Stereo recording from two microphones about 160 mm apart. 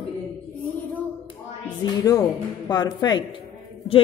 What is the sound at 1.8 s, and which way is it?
A man's voice, 25° left (ahead or behind).